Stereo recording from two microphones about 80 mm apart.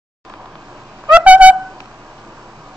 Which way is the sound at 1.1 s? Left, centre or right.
Centre.